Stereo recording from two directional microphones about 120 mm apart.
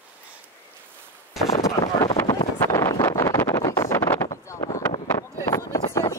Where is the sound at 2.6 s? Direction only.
25° left (ahead or behind).